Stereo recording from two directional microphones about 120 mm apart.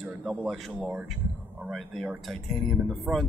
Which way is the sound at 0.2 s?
5° right (ahead or behind).